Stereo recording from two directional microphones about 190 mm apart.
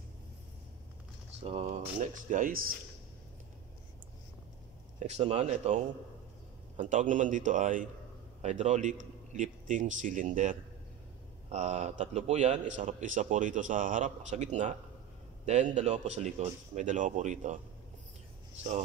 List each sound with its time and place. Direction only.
1.4 s a man's voice: 35° right (ahead or behind)
2.3 s speech: 45° right (ahead or behind)
4.9 s a man's voice: 35° right (ahead or behind)